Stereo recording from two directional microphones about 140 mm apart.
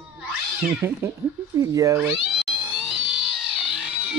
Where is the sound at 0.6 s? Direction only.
15° right (ahead or behind).